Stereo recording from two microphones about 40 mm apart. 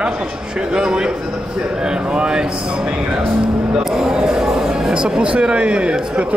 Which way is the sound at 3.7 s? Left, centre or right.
Centre.